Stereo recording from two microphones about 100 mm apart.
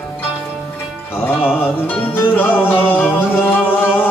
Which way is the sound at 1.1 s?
20° left (ahead or behind).